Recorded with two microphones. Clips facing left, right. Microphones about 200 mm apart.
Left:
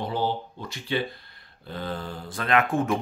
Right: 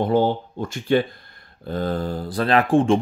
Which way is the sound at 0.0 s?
50° right (ahead or behind).